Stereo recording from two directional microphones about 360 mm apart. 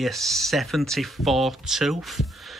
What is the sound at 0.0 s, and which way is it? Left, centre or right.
Speech, centre.